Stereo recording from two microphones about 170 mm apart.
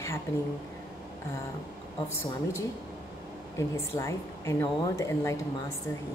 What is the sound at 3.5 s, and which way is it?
Speech, 15° left (ahead or behind).